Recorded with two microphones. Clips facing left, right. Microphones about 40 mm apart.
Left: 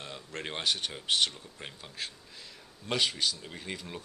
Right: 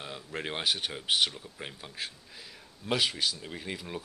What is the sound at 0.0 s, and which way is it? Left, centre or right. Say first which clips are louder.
A man's voice: right 2 dB; centre.